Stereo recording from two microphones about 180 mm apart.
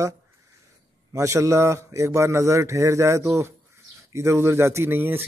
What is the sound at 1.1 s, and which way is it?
Speech, 15° right (ahead or behind).